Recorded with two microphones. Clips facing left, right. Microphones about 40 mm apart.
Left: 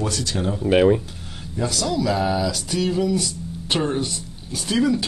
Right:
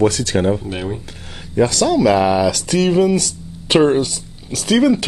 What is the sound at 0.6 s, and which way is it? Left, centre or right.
Speech, left.